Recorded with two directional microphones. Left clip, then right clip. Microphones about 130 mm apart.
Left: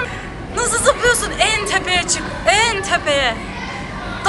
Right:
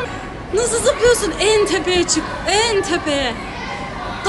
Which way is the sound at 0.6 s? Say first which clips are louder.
Even; 15° right (ahead or behind).